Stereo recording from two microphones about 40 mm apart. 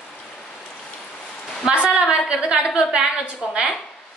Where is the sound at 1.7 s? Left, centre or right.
Right.